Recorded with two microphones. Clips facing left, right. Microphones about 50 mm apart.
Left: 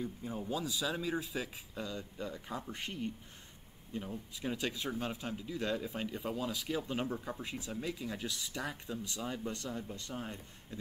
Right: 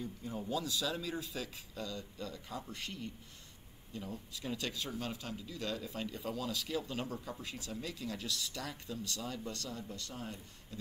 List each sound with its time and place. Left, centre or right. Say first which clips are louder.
0.0 s speech: left 2 dB; centre